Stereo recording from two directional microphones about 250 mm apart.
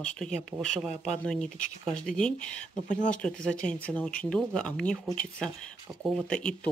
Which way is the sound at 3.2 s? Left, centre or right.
Centre.